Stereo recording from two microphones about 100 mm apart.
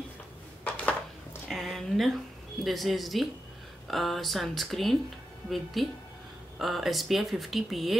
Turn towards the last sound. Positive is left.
turn(degrees=0)  # may be behind; listen again after turning